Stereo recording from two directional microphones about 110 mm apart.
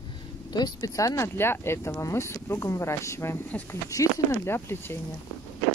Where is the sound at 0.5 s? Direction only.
40° left (ahead or behind); by 4.9 s 20° left (ahead or behind).